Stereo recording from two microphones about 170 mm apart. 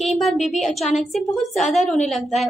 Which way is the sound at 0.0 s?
Centre (ahead or behind).